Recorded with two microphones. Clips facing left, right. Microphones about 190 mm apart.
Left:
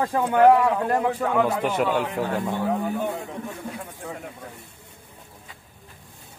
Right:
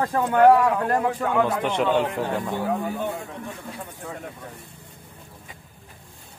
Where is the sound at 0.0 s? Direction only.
10° left (ahead or behind).